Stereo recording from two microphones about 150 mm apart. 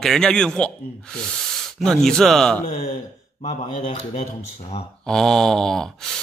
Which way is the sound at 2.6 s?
55° left (ahead or behind).